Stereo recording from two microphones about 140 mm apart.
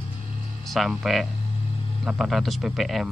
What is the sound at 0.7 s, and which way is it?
A man's voice, centre (ahead or behind).